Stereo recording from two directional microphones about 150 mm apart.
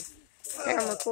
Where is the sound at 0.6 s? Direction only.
60° left (ahead or behind).